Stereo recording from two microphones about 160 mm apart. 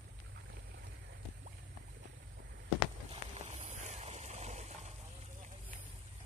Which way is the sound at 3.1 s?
45° right (ahead or behind).